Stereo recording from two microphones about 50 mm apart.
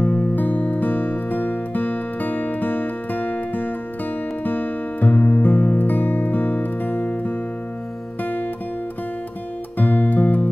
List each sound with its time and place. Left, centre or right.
0.0 s music: left
8.2 s guitar: left
9.8 s music: left